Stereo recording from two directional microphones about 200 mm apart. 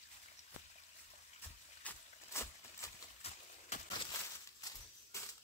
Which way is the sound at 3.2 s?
30° left (ahead or behind).